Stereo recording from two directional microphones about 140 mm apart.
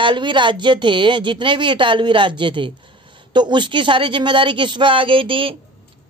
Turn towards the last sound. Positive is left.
turn(degrees=-40)  # may be behind; listen again after turning